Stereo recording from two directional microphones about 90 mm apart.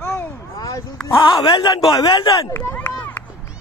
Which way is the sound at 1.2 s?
65° left (ahead or behind).